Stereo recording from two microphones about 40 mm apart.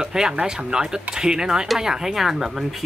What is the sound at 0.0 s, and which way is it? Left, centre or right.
Speech, centre.